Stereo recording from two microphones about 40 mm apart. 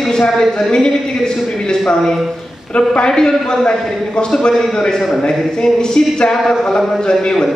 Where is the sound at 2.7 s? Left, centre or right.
Left.